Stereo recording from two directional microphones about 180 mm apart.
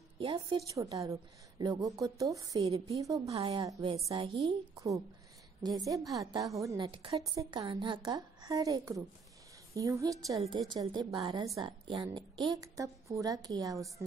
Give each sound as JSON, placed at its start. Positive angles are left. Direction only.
{"t": 0.2, "sound": "a woman's voice", "side_deg": -30}
{"t": 0.6, "sound": "a woman's voice", "side_deg": -20}
{"t": 2.6, "sound": "a woman's voice", "side_deg": -35}
{"t": 4.7, "sound": "a woman's voice", "side_deg": -15}
{"t": 6.9, "sound": "a woman's voice", "side_deg": -30}